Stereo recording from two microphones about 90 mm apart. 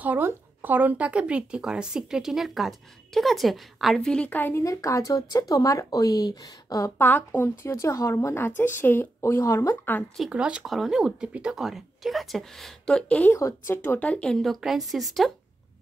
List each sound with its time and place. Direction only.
0.0 s speech: 20° right (ahead or behind); by 4.3 s 5° left (ahead or behind)
4.3 s speech: 25° left (ahead or behind)
4.6 s speech: 35° left (ahead or behind)
7.0 s speech: 20° left (ahead or behind)
10.3 s speech: 10° right (ahead or behind)
10.6 s speech: centre (ahead or behind)